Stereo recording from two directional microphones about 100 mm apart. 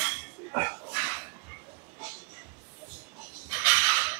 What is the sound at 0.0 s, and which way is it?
Dishes, 15° right (ahead or behind).